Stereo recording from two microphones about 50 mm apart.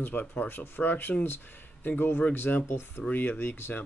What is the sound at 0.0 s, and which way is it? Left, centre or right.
Speech, left.